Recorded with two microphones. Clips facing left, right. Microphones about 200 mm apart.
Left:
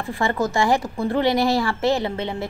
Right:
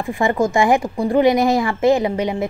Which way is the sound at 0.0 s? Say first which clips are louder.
Right 5 dB; 15° right (ahead or behind).